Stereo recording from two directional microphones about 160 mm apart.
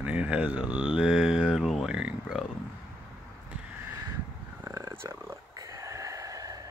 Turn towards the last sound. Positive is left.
turn(degrees=-20)  # may be behind; listen again after turning